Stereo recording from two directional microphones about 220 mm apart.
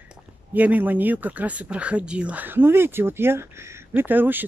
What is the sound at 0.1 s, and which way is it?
Speech, 5° right (ahead or behind).